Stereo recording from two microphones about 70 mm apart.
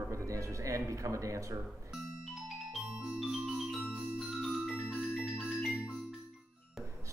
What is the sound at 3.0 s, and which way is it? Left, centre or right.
Music, centre.